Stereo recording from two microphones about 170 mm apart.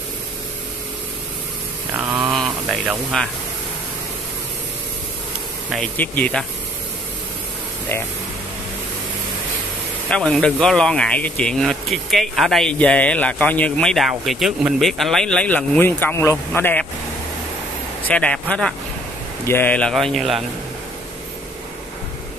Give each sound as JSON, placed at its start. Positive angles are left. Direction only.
{"t": 2.0, "sound": "a sound", "side_deg": -10}
{"t": 2.3, "sound": "speech", "side_deg": 0}
{"t": 5.7, "sound": "speech", "side_deg": 10}
{"t": 10.0, "sound": "speech", "side_deg": 5}
{"t": 18.0, "sound": "speech", "side_deg": 5}